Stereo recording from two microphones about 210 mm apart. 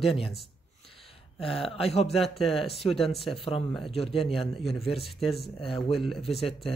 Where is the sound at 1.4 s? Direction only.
25° left (ahead or behind).